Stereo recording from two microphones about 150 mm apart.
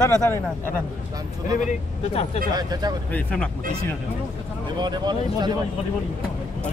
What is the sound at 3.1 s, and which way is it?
Speech, 10° left (ahead or behind).